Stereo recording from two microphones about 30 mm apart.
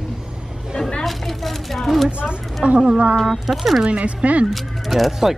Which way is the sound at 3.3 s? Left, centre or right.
Centre.